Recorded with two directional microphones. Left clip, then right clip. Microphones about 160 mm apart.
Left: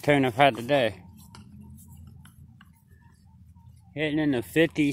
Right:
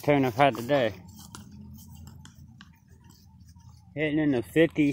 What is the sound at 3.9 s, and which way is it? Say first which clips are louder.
Speech: even; 15° left (ahead or behind).